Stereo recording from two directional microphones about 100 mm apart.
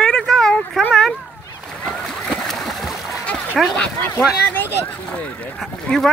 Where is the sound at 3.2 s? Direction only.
15° left (ahead or behind).